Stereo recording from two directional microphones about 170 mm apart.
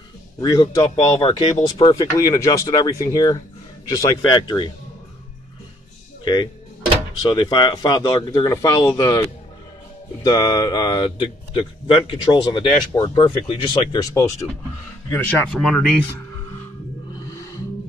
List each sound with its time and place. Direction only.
0.4 s speech: 20° left (ahead or behind)
6.2 s speech: 25° left (ahead or behind); by 16.0 s 5° left (ahead or behind)